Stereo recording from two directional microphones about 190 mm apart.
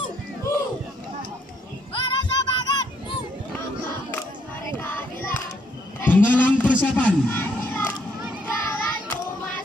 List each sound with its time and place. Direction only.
2.0 s child singing: 25° left (ahead or behind)
4.7 s child singing: 10° left (ahead or behind)
5.9 s a sound: 10° left (ahead or behind)
8.6 s child singing: 10° left (ahead or behind)